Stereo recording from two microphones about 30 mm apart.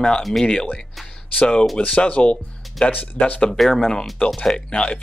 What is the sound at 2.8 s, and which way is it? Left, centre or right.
Speech, left.